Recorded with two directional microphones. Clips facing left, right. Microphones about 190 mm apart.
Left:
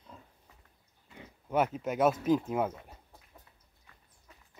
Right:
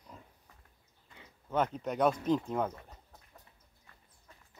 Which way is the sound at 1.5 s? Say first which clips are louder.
Left 2 dB; 5° left (ahead or behind).